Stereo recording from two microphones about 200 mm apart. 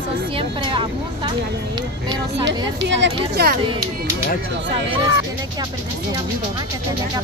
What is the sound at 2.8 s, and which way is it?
Speech, 55° right (ahead or behind).